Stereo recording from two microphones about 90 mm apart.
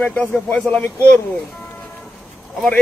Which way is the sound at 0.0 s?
15° left (ahead or behind).